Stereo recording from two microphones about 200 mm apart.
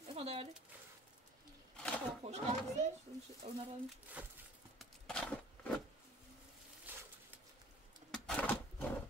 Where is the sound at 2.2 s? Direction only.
35° right (ahead or behind).